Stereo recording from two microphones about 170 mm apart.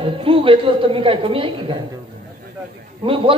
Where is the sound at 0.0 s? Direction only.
30° right (ahead or behind).